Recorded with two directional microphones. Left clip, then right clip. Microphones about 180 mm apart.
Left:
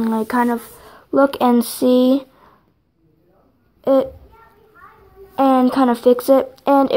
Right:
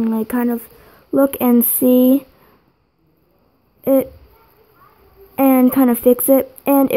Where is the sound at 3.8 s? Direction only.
25° right (ahead or behind).